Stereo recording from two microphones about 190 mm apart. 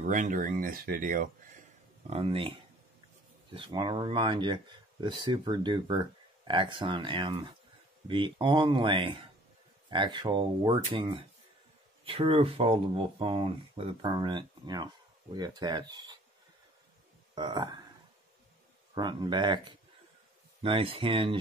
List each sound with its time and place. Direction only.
0.0 s speech: 40° right (ahead or behind)
2.0 s speech: 30° right (ahead or behind)
3.5 s speech: 25° right (ahead or behind)
17.4 s speech: 20° right (ahead or behind)
18.9 s speech: 20° right (ahead or behind)
20.6 s speech: 30° right (ahead or behind)